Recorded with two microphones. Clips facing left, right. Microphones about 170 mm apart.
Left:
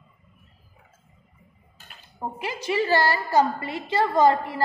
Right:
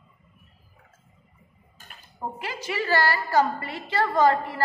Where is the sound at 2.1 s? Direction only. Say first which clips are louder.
Left 2 dB; 20° left (ahead or behind).